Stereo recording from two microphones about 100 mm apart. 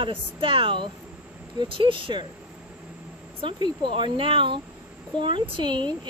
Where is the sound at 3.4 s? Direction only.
55° right (ahead or behind).